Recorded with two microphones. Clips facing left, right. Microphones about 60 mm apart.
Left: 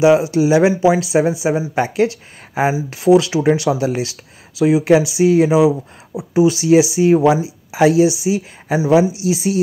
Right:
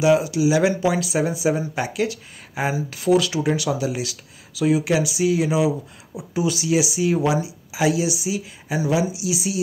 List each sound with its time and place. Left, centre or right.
0.0 s speech: left
0.3 s speech: left
0.6 s speech: left
3.7 s speech: left
4.6 s speech: left
9.2 s speech: left